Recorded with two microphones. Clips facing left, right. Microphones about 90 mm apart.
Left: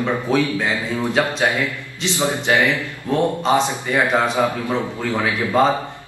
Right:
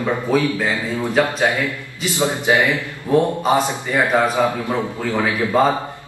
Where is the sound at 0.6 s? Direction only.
20° left (ahead or behind).